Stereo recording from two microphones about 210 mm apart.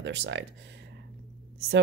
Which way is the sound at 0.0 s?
60° right (ahead or behind).